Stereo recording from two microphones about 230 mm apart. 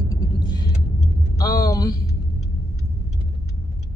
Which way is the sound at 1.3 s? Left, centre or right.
Centre.